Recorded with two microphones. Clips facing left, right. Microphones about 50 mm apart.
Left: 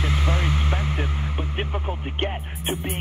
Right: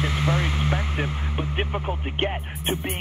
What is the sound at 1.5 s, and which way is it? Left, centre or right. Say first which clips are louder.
Speech: right 3 dB; centre.